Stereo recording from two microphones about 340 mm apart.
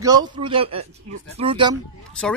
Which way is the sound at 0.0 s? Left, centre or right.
Centre.